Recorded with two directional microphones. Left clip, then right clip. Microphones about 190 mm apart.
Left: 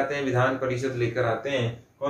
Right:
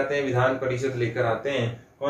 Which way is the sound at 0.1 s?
20° left (ahead or behind).